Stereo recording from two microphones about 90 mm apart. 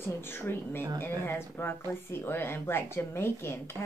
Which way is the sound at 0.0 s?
25° left (ahead or behind).